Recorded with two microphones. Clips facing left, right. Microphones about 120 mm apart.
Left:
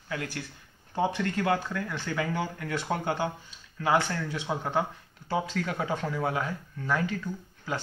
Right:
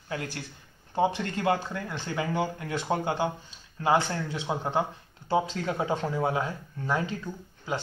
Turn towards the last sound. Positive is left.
turn(degrees=-25)  # may be behind; listen again after turning